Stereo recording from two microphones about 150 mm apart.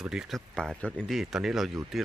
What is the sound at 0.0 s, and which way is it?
Speech, 5° right (ahead or behind).